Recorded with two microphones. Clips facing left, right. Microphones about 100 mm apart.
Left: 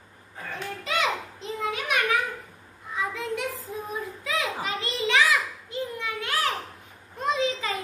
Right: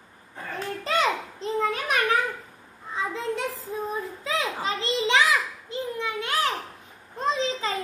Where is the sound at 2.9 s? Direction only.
30° right (ahead or behind).